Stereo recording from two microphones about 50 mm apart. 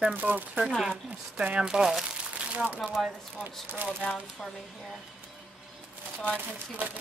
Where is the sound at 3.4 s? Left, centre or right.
Right.